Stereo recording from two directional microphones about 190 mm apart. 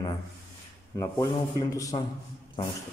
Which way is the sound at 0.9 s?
20° left (ahead or behind).